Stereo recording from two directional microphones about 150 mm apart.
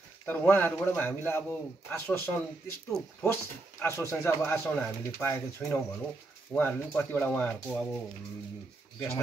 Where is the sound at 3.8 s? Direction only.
20° left (ahead or behind).